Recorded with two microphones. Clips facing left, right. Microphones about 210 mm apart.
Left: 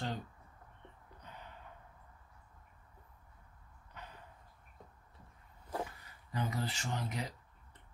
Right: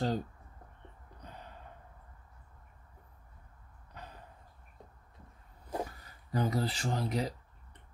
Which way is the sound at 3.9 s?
35° right (ahead or behind).